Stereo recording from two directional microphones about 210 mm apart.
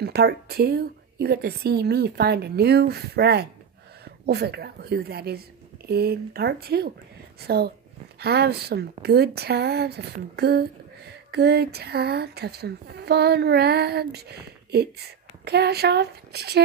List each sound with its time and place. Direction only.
0.0 s a woman's voice: 50° right (ahead or behind)